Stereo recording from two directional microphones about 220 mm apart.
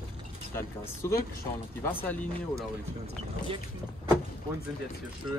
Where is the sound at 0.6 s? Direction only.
15° left (ahead or behind).